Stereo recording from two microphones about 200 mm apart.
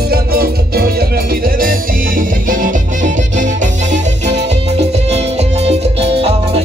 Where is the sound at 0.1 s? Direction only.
50° right (ahead or behind).